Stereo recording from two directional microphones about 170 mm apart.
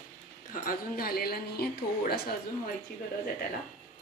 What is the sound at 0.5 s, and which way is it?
A woman's voice, 55° left (ahead or behind).